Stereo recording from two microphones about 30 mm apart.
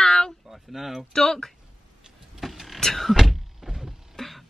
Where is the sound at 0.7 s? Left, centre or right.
Centre.